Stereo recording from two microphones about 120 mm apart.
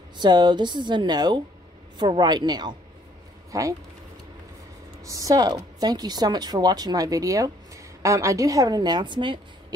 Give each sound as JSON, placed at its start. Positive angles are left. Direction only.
{"t": 0.2, "sound": "a woman's voice", "side_deg": -40}
{"t": 5.0, "sound": "a woman's voice", "side_deg": -30}